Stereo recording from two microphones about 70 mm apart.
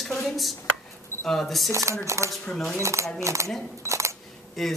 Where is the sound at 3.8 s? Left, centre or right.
Right.